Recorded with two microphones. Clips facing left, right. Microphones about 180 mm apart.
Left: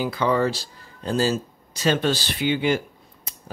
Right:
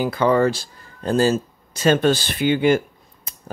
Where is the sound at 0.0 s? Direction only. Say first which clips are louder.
Right 4 dB; 50° right (ahead or behind).